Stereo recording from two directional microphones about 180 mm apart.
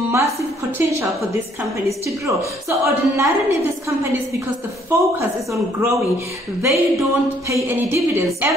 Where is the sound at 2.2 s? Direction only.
15° right (ahead or behind).